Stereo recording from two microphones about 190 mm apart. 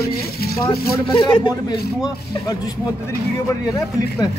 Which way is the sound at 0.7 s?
25° left (ahead or behind).